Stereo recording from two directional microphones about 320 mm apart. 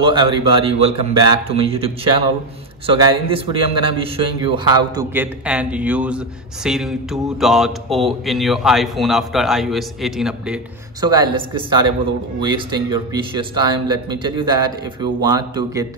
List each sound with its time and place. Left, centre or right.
0.0 s a man's voice: centre